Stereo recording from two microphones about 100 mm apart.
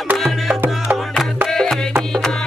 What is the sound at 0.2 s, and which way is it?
Music, centre (ahead or behind).